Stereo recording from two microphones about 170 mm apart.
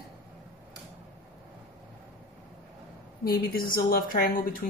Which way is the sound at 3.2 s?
60° left (ahead or behind).